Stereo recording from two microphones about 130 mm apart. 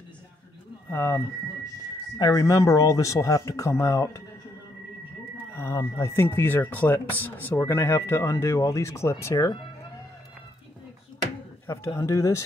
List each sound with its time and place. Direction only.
0.9 s speech: 20° left (ahead or behind)
5.5 s speech: 20° left (ahead or behind)
11.6 s speech: 20° left (ahead or behind)